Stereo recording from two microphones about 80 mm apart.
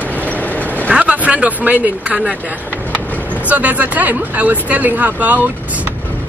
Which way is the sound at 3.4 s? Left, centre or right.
Centre.